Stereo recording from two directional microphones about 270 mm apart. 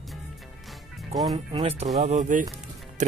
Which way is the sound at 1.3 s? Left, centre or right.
Right.